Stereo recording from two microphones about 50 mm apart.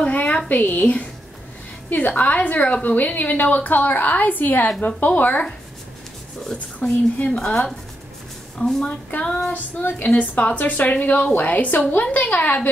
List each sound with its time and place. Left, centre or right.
0.0 s a sound: left
0.5 s a woman's voice: left
4.6 s speech: left
5.0 s a woman's voice: left
6.5 s a woman's voice: left
9.5 s a woman's voice: left